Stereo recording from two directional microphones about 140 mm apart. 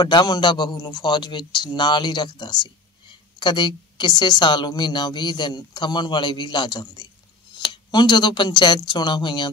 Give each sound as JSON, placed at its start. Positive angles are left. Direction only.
{"t": 0.0, "sound": "a man's voice", "side_deg": 30}